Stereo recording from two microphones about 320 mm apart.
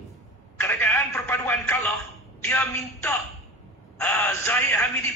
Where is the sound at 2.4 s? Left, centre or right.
Centre.